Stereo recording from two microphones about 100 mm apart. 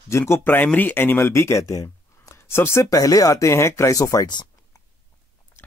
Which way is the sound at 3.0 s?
35° left (ahead or behind).